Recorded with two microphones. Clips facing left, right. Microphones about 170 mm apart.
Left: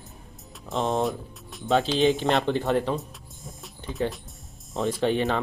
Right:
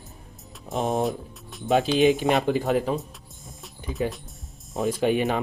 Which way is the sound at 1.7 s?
20° right (ahead or behind).